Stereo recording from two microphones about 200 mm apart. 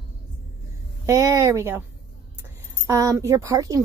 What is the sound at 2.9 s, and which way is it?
Speech, 15° right (ahead or behind).